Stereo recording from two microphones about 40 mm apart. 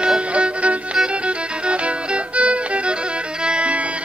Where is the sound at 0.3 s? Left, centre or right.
Right.